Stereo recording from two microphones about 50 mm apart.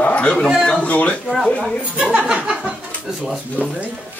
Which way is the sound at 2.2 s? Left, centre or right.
Centre.